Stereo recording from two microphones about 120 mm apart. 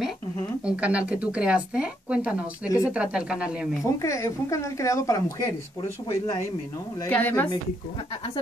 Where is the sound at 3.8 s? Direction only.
25° left (ahead or behind).